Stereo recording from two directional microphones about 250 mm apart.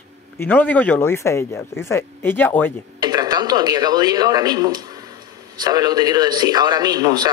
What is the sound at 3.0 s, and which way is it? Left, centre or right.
A man's voice, centre.